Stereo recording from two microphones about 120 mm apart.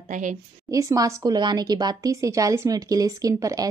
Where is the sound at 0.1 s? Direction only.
90° right.